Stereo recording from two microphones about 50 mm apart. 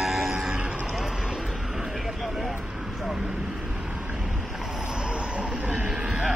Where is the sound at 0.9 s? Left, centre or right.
Centre.